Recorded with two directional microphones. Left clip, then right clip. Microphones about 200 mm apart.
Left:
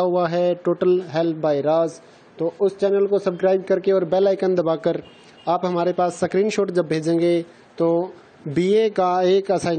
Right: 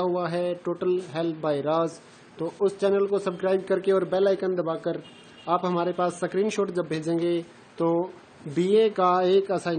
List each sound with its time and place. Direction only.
0.0 s speech: 30° left (ahead or behind)
8.5 s speech: 30° left (ahead or behind)